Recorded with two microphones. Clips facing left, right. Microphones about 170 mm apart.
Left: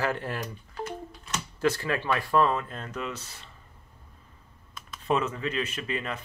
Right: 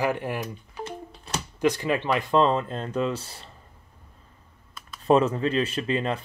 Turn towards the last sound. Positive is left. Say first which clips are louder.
# right 7 dB
turn(degrees=-30)  # may be behind; listen again after turning